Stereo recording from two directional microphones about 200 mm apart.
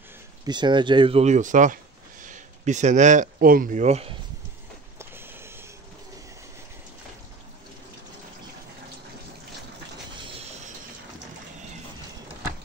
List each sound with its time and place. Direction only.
0.5 s speech: 20° right (ahead or behind)
4.9 s train: 10° right (ahead or behind)